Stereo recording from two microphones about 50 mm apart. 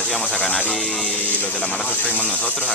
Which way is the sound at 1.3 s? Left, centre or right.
Left.